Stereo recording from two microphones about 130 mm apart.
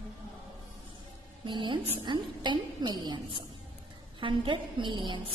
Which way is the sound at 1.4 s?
40° right (ahead or behind).